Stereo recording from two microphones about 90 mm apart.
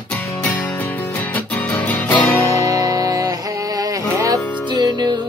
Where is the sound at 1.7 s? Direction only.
20° left (ahead or behind).